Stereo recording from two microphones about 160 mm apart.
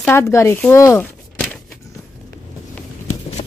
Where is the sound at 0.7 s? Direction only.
15° left (ahead or behind).